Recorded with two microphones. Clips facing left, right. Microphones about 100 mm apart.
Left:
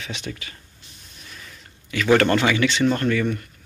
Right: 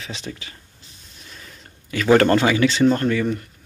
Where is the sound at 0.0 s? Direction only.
30° right (ahead or behind).